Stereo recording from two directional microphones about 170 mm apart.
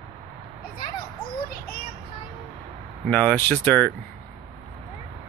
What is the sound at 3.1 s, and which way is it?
Speech, 10° left (ahead or behind).